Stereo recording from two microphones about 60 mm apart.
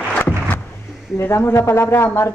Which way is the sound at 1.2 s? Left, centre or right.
Left.